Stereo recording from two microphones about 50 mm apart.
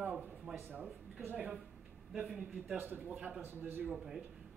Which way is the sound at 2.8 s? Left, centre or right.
Right.